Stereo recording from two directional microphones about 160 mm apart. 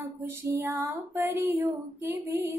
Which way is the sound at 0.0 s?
15° right (ahead or behind).